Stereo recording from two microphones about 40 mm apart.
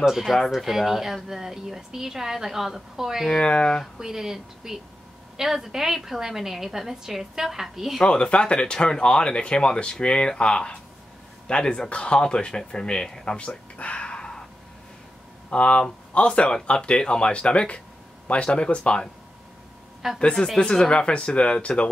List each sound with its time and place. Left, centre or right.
0.0 s speech: centre
3.3 s speech: left
4.0 s speech: centre
8.0 s speech: left
13.5 s a sound: left
15.5 s speech: left
20.2 s speech: left